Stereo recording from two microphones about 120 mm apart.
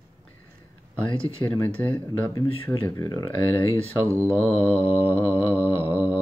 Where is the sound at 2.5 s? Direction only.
45° left (ahead or behind).